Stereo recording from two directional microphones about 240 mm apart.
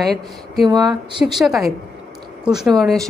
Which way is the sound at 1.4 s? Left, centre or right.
Centre.